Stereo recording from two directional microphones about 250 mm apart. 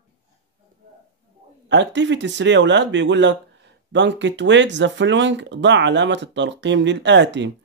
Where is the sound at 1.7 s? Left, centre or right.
Right.